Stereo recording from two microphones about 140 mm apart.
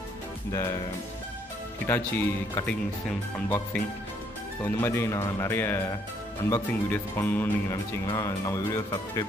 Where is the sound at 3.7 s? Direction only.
10° left (ahead or behind).